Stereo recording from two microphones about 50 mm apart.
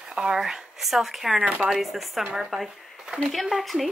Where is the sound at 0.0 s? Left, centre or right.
Centre.